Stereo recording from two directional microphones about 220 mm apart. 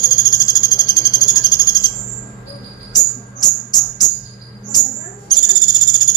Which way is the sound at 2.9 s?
15° left (ahead or behind).